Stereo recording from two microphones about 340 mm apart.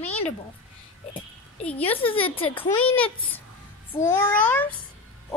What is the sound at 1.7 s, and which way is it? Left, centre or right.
Speech, centre.